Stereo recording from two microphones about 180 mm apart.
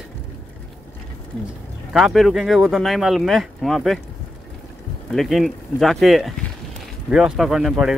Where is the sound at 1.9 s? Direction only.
Centre (ahead or behind).